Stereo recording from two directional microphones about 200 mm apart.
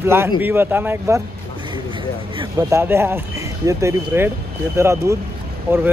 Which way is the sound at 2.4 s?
15° right (ahead or behind).